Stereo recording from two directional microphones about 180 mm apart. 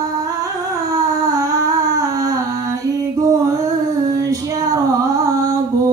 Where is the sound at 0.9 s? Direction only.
20° right (ahead or behind).